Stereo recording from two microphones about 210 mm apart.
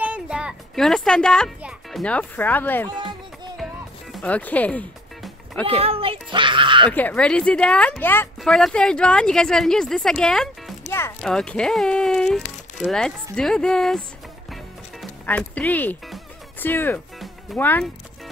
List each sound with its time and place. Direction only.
0.0 s music: 5° right (ahead or behind)
5.7 s speech: 25° right (ahead or behind)
6.9 s speech: 10° left (ahead or behind)
14.5 s music: 5° left (ahead or behind)